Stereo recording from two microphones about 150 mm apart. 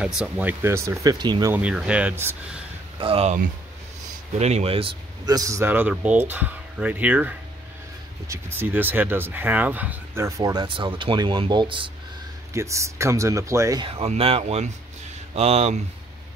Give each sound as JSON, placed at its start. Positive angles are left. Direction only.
{"t": 0.0, "sound": "speech", "side_deg": -5}
{"t": 1.5, "sound": "speech", "side_deg": -10}
{"t": 3.0, "sound": "speech", "side_deg": -40}
{"t": 4.4, "sound": "speech", "side_deg": -45}
{"t": 5.2, "sound": "speech", "side_deg": -25}
{"t": 12.5, "sound": "speech", "side_deg": -20}
{"t": 13.8, "sound": "speech", "side_deg": -40}